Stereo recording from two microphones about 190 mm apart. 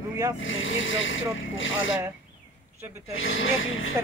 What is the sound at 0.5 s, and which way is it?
Speech, 90° left.